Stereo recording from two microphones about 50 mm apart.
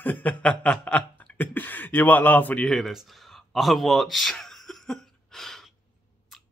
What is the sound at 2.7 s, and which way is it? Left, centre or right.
Speech, centre.